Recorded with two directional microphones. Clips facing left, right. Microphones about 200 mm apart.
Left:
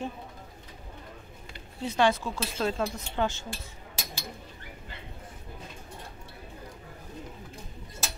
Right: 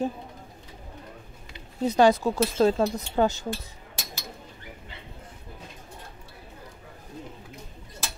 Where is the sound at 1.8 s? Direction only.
40° right (ahead or behind).